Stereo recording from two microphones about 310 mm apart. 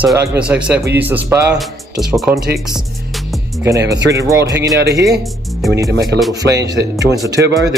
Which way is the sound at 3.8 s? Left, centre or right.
Right.